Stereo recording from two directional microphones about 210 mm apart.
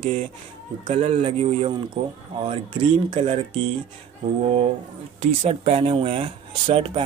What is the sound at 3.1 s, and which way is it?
Speech, 25° right (ahead or behind).